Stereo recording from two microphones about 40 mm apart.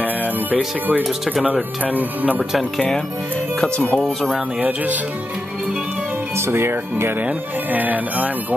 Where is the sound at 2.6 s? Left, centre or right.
Left.